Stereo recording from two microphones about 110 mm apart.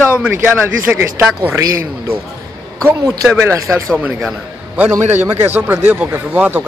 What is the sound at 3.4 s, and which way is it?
Speech, 25° right (ahead or behind).